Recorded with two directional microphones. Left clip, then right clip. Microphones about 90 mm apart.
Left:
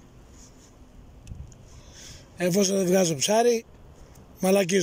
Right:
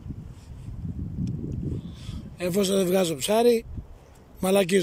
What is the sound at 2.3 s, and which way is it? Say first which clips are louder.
Speech: even; 40° right (ahead or behind).